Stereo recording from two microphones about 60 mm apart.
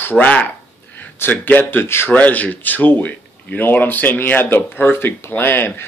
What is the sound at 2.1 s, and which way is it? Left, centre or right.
Speech, left.